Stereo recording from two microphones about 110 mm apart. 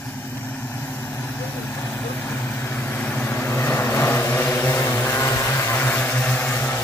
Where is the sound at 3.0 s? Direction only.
15° left (ahead or behind).